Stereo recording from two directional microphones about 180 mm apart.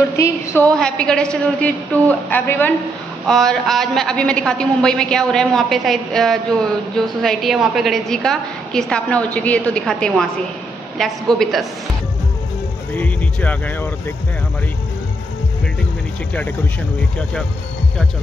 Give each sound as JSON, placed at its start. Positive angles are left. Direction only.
{"t": 0.2, "sound": "a woman's voice", "side_deg": 15}
{"t": 0.7, "sound": "a man's voice", "side_deg": 5}
{"t": 12.9, "sound": "speech", "side_deg": 10}